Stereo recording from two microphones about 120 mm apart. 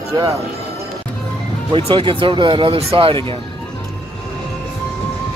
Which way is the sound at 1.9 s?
45° right (ahead or behind).